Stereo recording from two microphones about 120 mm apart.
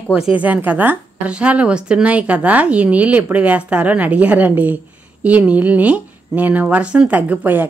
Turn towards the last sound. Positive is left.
turn(degrees=-15)  # may be behind; listen again after turning